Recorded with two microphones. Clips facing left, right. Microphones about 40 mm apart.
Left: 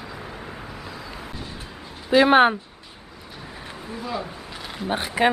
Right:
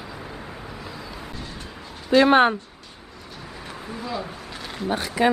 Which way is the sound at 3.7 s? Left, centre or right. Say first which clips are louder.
Even; centre.